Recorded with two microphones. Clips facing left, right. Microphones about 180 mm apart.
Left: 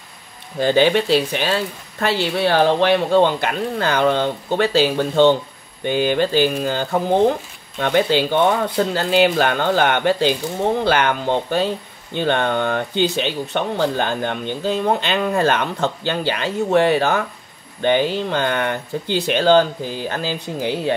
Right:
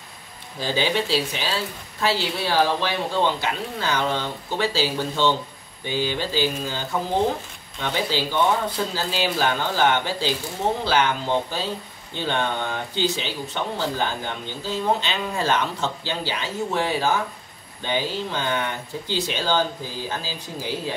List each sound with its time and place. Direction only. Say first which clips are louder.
0.6 s speech: left 8 dB; 60° left (ahead or behind)